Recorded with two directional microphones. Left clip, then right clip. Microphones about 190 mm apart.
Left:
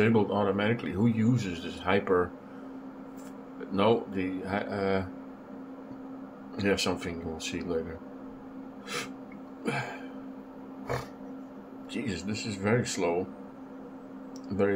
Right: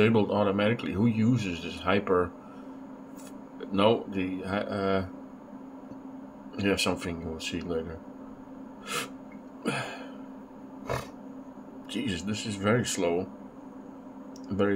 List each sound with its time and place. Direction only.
0.0 s a man's voice: 20° right (ahead or behind)
3.7 s a man's voice: 20° right (ahead or behind)
6.5 s a man's voice: 15° right (ahead or behind)
8.8 s a sound: 25° right (ahead or behind)
11.9 s speech: 20° right (ahead or behind)
14.5 s a man's voice: 15° right (ahead or behind)